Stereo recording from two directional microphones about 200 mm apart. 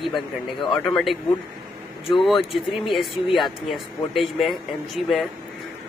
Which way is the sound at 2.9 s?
Centre (ahead or behind).